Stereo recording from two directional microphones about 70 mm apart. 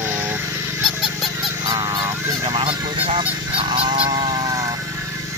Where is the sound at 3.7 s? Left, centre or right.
Right.